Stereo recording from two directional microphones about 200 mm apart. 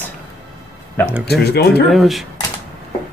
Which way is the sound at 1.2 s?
55° left (ahead or behind).